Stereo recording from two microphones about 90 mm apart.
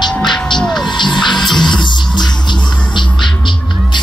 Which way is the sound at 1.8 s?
55° left (ahead or behind).